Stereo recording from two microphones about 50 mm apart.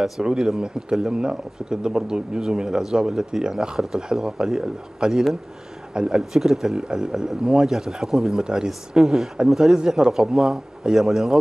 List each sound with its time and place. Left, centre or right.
0.2 s speech: centre